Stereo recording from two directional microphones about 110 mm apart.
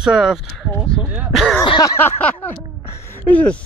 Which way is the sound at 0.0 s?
5° right (ahead or behind).